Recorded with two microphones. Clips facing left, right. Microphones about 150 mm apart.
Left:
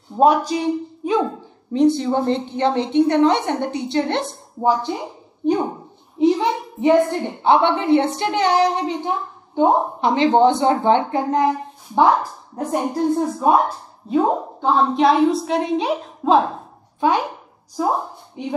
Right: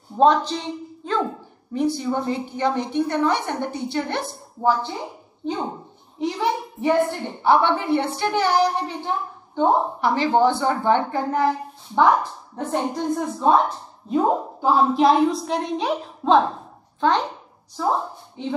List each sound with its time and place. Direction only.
0.2 s speech: 10° left (ahead or behind)
2.5 s a woman's voice: 25° left (ahead or behind)
6.1 s a sound: 20° left (ahead or behind)
7.2 s a woman's voice: 20° left (ahead or behind)